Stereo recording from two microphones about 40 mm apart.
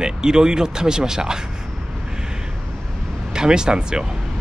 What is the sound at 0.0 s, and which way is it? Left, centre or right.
Speech, centre.